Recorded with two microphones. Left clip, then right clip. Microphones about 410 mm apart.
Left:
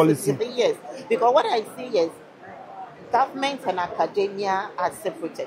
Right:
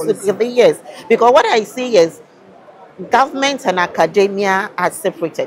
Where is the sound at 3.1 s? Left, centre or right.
Right.